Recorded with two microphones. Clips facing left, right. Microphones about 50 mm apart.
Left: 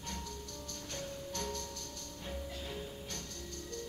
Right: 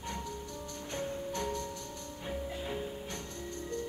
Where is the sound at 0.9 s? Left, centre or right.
Right.